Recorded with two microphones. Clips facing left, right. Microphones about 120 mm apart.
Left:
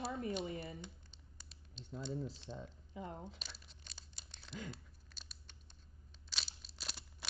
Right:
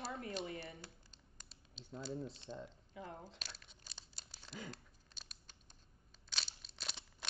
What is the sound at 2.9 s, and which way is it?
Speech, 20° left (ahead or behind).